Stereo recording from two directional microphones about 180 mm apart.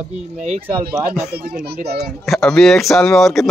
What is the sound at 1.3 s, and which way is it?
Speech, 60° right (ahead or behind).